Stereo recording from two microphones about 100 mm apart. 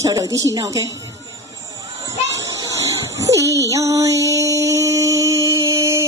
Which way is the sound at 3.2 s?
30° right (ahead or behind).